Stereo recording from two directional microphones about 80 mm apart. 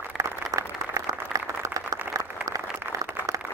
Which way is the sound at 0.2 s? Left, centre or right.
Right.